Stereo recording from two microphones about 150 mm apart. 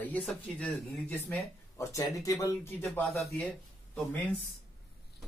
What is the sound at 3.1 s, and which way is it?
Speech, centre (ahead or behind).